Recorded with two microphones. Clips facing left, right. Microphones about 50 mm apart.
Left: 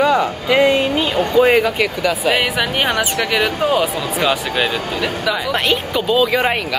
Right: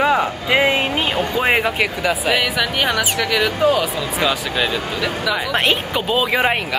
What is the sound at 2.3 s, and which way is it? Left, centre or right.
Speech, centre.